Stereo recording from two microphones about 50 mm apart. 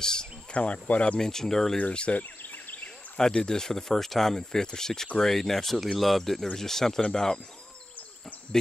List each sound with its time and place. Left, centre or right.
0.0 s speech: centre
0.5 s speech: left
1.2 s speech: centre
1.8 s speech: left
2.4 s a sound: left
3.3 s speech: centre